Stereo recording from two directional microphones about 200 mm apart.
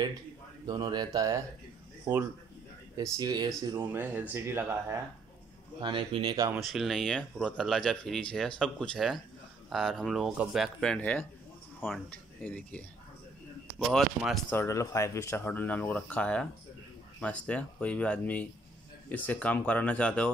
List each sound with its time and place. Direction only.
0.7 s speech: 20° right (ahead or behind)
3.0 s speech: 20° right (ahead or behind)
5.8 s speech: 25° right (ahead or behind)
6.5 s speech: centre (ahead or behind)
14.6 s speech: 15° left (ahead or behind)